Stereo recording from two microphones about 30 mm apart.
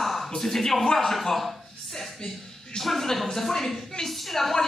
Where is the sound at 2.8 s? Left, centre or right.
Centre.